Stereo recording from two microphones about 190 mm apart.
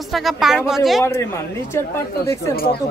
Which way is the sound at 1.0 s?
15° left (ahead or behind).